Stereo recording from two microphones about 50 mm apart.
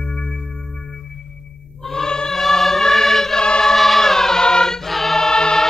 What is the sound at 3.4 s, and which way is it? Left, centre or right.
Choir, centre.